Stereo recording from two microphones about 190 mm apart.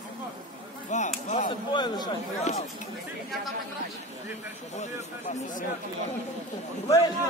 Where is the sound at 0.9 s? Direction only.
40° left (ahead or behind).